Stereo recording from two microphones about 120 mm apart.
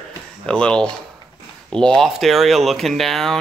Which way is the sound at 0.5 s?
10° left (ahead or behind).